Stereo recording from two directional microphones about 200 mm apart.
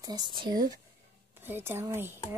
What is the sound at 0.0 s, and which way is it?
Speech, 20° right (ahead or behind).